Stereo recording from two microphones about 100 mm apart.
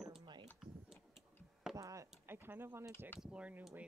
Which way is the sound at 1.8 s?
30° right (ahead or behind).